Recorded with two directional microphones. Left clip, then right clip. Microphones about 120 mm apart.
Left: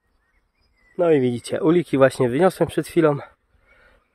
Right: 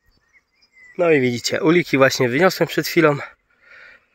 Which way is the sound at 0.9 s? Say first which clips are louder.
Right 2 dB; 15° left (ahead or behind).